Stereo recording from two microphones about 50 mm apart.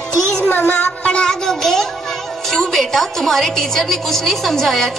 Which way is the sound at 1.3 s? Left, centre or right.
Centre.